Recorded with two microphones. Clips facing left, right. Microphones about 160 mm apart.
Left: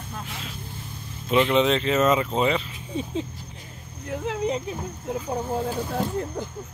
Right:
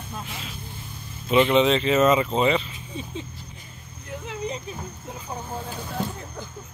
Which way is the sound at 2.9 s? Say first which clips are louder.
Left 6 dB; 90° left.